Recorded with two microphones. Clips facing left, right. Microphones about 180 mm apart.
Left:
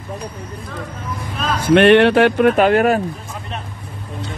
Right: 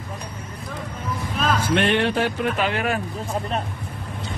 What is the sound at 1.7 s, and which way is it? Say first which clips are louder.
Speech: left 14 dB; 70° left (ahead or behind).